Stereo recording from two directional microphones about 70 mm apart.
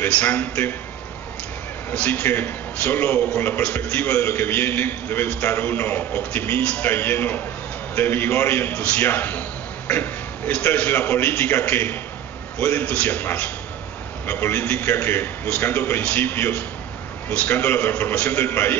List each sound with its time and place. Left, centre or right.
0.1 s a man's voice: left
2.0 s a man's voice: centre
2.2 s a man's voice: left
3.6 s a man's voice: centre
8.7 s a man's voice: centre
18.4 s a man's voice: left